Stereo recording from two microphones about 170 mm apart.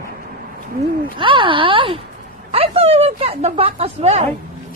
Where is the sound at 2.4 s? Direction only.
35° right (ahead or behind).